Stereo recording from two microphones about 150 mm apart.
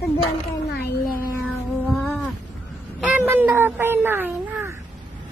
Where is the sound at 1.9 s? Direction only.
15° left (ahead or behind).